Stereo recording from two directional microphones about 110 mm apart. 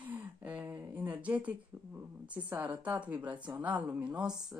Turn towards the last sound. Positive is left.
turn(degrees=-25)  # may be behind; listen again after turning